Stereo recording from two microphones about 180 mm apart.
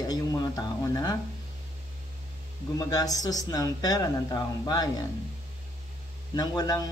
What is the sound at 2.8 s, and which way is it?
Speech, 20° left (ahead or behind).